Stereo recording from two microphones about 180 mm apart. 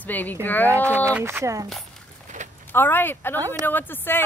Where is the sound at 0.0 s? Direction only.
10° left (ahead or behind).